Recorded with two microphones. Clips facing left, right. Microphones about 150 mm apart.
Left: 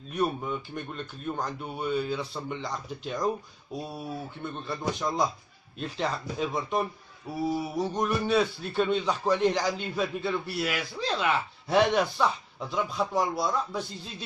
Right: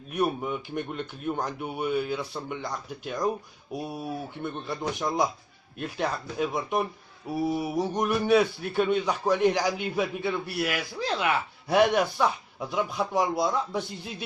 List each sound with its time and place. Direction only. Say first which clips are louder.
0.1 s a man's voice: right 1 dB; 15° right (ahead or behind)